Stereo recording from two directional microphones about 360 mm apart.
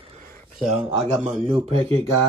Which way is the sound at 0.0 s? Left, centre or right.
Centre.